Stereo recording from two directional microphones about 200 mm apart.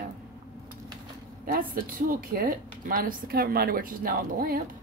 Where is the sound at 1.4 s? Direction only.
45° right (ahead or behind).